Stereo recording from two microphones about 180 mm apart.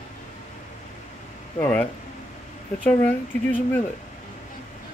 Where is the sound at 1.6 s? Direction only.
10° left (ahead or behind).